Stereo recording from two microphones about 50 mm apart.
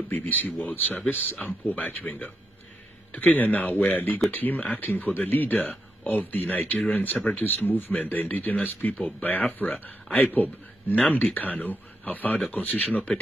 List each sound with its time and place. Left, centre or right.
0.1 s speech: left